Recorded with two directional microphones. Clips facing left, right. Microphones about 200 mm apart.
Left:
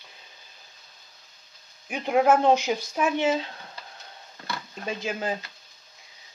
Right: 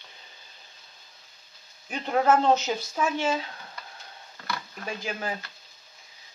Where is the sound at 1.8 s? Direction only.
10° left (ahead or behind).